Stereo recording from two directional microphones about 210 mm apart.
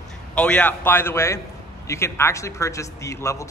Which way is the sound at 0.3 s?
5° left (ahead or behind).